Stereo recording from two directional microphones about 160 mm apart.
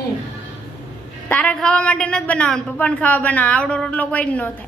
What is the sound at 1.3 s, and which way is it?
A woman's voice, 5° left (ahead or behind).